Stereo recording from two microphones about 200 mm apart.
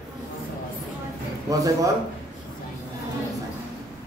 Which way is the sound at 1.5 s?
15° right (ahead or behind).